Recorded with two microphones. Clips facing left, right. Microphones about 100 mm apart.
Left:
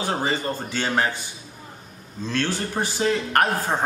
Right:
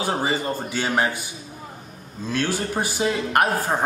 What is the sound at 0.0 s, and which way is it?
Speech, 10° right (ahead or behind).